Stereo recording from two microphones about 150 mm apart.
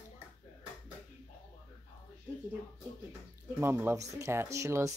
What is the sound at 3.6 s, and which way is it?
Speech, 15° right (ahead or behind).